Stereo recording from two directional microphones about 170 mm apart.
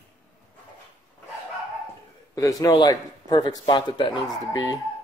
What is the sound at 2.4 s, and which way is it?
A man's voice, 20° left (ahead or behind).